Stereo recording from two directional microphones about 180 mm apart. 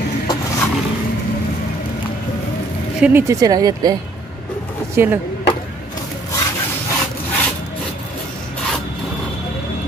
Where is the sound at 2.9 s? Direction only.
10° right (ahead or behind).